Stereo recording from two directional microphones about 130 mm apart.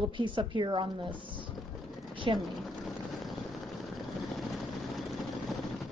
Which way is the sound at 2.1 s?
40° right (ahead or behind).